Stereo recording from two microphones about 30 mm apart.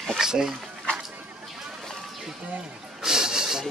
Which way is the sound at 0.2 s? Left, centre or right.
Right.